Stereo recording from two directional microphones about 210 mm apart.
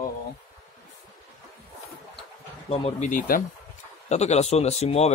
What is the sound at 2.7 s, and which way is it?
Speech, 30° left (ahead or behind).